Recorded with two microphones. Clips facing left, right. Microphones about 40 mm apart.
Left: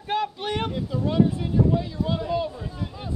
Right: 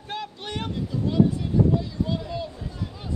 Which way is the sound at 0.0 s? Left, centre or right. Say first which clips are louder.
Left 7 dB; left.